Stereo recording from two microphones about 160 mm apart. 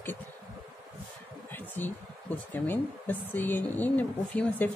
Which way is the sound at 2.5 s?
10° left (ahead or behind).